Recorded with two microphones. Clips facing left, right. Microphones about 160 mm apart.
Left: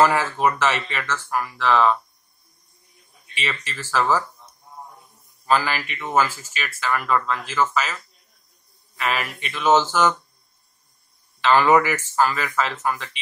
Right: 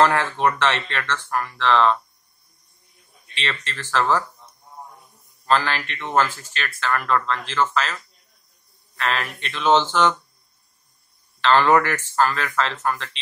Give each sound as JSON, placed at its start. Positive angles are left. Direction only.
{"t": 0.0, "sound": "speech", "side_deg": 5}
{"t": 3.3, "sound": "speech", "side_deg": 10}
{"t": 5.4, "sound": "speech", "side_deg": 10}
{"t": 11.4, "sound": "speech", "side_deg": 10}